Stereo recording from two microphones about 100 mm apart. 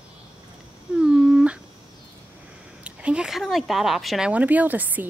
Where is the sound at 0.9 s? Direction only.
10° right (ahead or behind).